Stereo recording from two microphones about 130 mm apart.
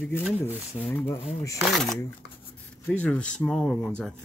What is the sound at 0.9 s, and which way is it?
Speech, 20° left (ahead or behind).